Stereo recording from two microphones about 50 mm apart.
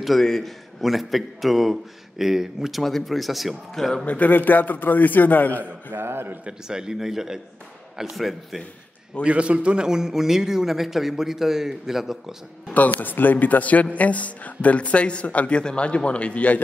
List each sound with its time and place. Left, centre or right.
0.0 s a man's voice: centre
2.8 s a man's voice: centre
4.0 s a man's voice: left
5.9 s a man's voice: right
6.4 s a man's voice: centre
9.2 s a man's voice: right; by 12.7 s centre
12.7 s speech: left